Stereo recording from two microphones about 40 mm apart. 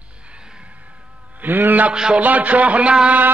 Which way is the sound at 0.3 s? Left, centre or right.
Right.